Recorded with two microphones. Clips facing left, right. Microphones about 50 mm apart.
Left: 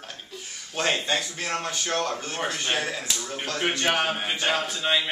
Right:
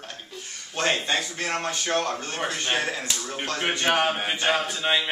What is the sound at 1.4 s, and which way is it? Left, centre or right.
A man's voice, centre.